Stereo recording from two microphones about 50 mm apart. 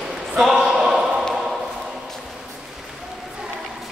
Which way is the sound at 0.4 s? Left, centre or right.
Centre.